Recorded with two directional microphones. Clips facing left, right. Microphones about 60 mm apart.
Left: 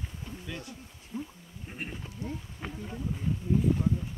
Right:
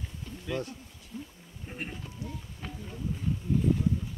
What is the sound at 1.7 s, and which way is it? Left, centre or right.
Speech, centre.